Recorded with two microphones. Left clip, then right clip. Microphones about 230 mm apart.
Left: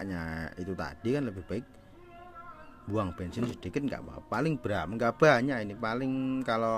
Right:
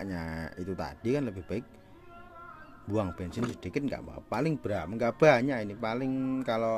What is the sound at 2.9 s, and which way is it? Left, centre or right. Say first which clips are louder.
Speech: right 1 dB; centre.